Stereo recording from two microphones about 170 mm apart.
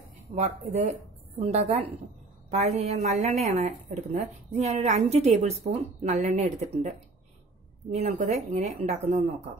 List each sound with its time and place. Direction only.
0.3 s a woman's voice: 40° right (ahead or behind)